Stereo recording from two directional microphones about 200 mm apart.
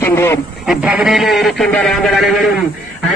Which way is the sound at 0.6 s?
5° right (ahead or behind).